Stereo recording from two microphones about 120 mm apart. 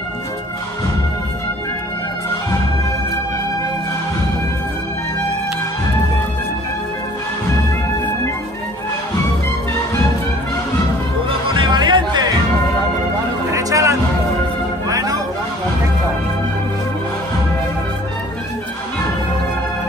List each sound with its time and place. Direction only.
11.2 s music: 45° right (ahead or behind)
13.5 s music: 30° right (ahead or behind)